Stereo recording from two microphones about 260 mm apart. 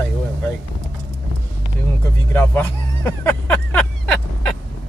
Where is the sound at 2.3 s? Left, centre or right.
Centre.